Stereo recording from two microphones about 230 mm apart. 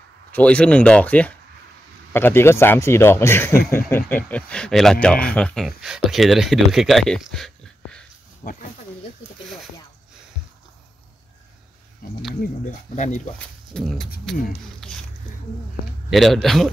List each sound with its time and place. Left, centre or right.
0.3 s speech: centre
8.4 s speech: left
12.0 s speech: left
13.7 s speech: centre
14.8 s a sound: centre
16.1 s speech: centre